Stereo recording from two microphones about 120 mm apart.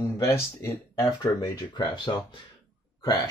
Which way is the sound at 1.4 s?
40° left (ahead or behind).